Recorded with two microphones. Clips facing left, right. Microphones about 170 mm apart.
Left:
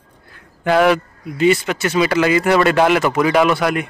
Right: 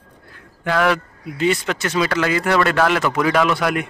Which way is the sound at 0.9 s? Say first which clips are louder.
Left 4 dB; 5° left (ahead or behind).